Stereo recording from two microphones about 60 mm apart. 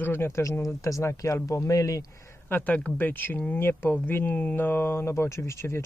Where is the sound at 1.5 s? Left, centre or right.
Left.